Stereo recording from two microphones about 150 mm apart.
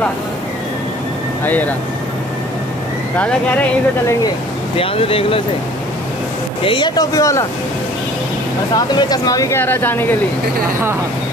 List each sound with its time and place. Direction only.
1.4 s speech: 10° left (ahead or behind)
4.7 s speech: 40° left (ahead or behind)
6.6 s speech: 35° left (ahead or behind)
8.7 s speech: 25° left (ahead or behind)